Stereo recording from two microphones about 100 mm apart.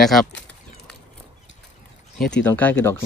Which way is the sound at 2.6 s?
20° left (ahead or behind).